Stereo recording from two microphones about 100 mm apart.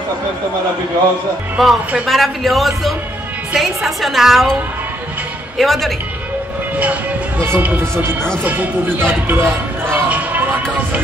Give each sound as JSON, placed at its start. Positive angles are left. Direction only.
{"t": 1.6, "sound": "a woman's voice", "side_deg": 0}
{"t": 5.6, "sound": "a woman's voice", "side_deg": 0}
{"t": 7.3, "sound": "speech", "side_deg": -25}
{"t": 8.5, "sound": "music", "side_deg": -20}